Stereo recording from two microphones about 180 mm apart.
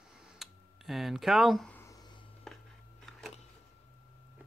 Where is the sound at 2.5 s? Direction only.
Centre (ahead or behind).